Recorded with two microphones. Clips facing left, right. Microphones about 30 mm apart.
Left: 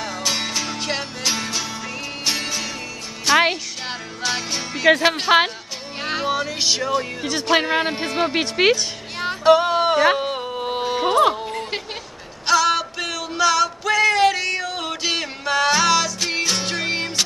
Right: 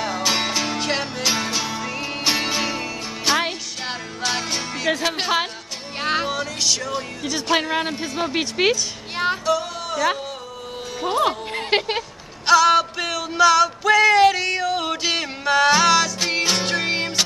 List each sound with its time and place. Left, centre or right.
0.0 s music: centre
4.8 s a man's voice: centre
5.9 s music: centre
6.2 s music: centre
6.9 s speech: centre
7.6 s a man's voice: left
8.3 s speech: centre
9.4 s music: left
11.1 s speech: centre
11.5 s a sound: right
12.4 s a sound: centre